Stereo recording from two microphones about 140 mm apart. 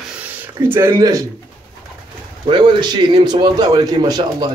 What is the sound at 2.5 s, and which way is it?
A man's voice, 30° right (ahead or behind).